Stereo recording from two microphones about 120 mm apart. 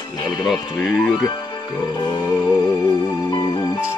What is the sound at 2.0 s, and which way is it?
Speech, 35° left (ahead or behind).